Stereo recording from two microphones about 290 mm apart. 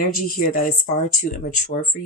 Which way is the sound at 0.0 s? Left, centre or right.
Left.